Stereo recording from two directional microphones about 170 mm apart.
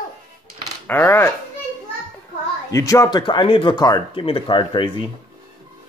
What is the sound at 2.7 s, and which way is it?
Speech, 20° left (ahead or behind).